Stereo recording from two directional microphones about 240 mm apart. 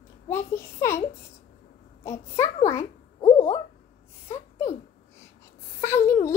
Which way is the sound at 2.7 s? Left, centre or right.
Centre.